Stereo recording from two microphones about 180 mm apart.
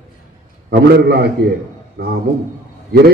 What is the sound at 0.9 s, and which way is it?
A man's voice, 60° right (ahead or behind).